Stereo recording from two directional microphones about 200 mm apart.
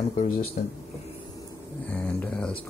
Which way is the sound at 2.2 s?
5° left (ahead or behind).